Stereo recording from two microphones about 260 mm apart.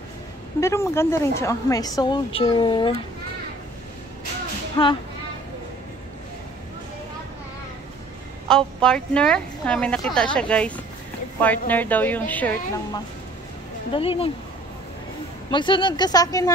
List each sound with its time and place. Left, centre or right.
0.6 s a woman's voice: centre
4.8 s a woman's voice: centre
8.5 s a woman's voice: centre
13.9 s speech: left
15.5 s a woman's voice: centre